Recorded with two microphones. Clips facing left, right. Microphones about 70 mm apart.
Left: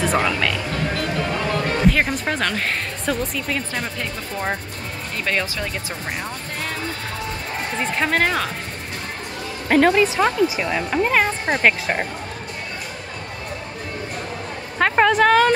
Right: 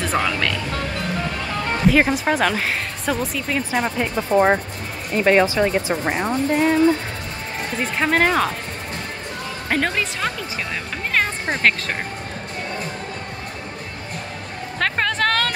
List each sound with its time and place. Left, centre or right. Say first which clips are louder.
0.0 s speech: left 1 dB; centre
1.9 s speech: right 6 dB; centre
3.7 s speech: right 6 dB; centre
4.3 s speech: right 14 dB; right
5.1 s speech: right 9 dB; right
8.0 s speech: right 3 dB; centre
9.7 s speech: left 7 dB; centre
14.8 s a sound: left 6 dB; centre